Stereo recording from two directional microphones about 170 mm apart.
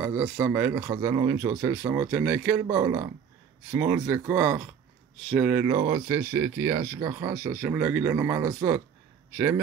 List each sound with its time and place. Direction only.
0.0 s speech: 10° right (ahead or behind)